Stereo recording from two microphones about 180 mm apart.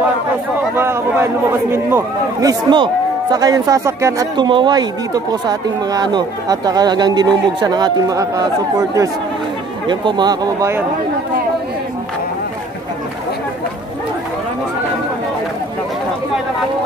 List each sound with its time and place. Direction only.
0.7 s a man's voice: 15° right (ahead or behind)
2.7 s speech: 25° right (ahead or behind)
9.8 s speech: 25° right (ahead or behind)